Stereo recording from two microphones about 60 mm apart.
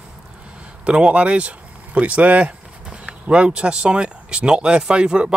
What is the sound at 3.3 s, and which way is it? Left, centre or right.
Speech, centre.